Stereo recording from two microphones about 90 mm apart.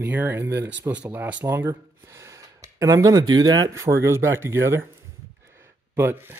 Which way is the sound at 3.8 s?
30° right (ahead or behind).